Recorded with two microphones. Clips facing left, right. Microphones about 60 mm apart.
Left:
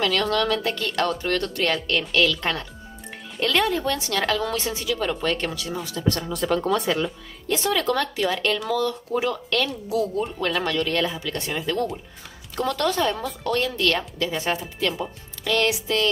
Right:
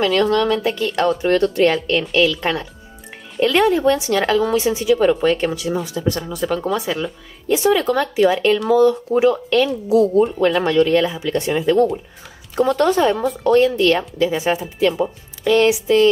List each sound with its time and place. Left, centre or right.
0.0 s a woman's voice: centre
7.6 s speech: centre